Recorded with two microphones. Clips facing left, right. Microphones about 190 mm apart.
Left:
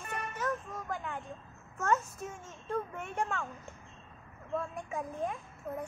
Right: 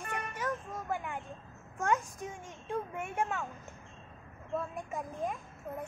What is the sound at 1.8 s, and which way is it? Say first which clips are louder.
A woman's voice: even; 15° right (ahead or behind).